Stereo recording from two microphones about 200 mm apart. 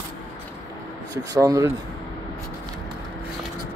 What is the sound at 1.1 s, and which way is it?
Speech, 20° right (ahead or behind).